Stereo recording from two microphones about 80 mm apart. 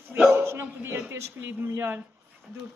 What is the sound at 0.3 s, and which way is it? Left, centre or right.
Speech, right.